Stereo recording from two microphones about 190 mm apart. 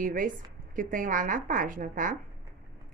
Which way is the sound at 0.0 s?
45° right (ahead or behind).